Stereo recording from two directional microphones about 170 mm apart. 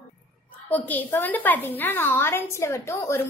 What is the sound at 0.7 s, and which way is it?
A child's voice, 10° left (ahead or behind).